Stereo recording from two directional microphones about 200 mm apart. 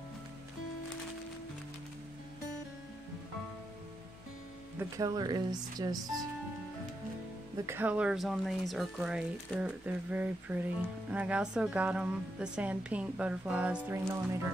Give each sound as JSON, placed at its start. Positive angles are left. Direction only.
{"t": 4.7, "sound": "speech", "side_deg": -15}
{"t": 7.6, "sound": "a woman's voice", "side_deg": -10}